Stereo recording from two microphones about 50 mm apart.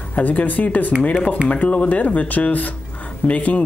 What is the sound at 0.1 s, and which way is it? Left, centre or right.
Speech, left.